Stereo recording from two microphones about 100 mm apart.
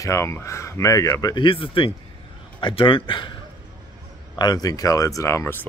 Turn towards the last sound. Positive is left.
turn(degrees=20)  # may be behind; listen again after turning